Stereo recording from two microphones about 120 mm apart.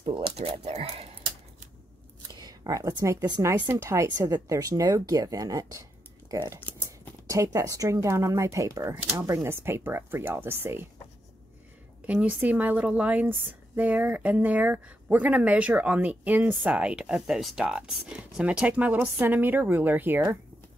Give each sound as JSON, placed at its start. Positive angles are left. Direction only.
{"t": 0.0, "sound": "speech", "side_deg": -50}
{"t": 2.3, "sound": "speech", "side_deg": -35}
{"t": 3.4, "sound": "speech", "side_deg": -15}
{"t": 8.9, "sound": "speech", "side_deg": -15}
{"t": 12.1, "sound": "speech", "side_deg": -10}